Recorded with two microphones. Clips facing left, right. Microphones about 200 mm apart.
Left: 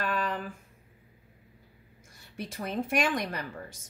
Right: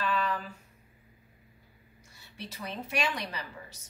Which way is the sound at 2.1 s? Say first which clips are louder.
Left 5 dB; 50° left (ahead or behind).